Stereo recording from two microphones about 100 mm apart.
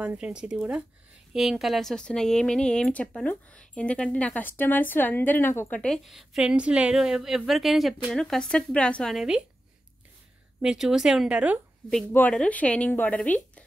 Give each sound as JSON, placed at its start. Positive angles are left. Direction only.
{"t": 0.0, "sound": "speech", "side_deg": -10}
{"t": 6.0, "sound": "a woman's voice", "side_deg": -5}
{"t": 10.6, "sound": "speech", "side_deg": -5}
{"t": 12.1, "sound": "a woman's voice", "side_deg": 20}